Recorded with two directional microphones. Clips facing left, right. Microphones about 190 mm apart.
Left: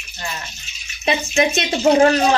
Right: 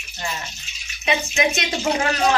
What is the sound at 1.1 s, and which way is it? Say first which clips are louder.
Speech: left 2 dB; 35° left (ahead or behind).